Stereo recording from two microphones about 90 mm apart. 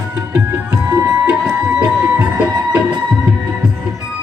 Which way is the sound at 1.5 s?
20° right (ahead or behind).